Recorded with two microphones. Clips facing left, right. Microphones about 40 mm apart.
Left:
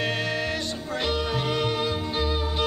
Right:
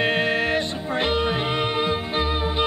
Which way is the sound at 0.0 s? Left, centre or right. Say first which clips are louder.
Right 6 dB; right.